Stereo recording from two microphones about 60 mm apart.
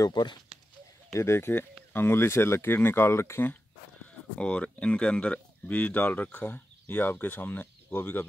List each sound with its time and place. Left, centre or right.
1.1 s speech: left
4.4 s speech: left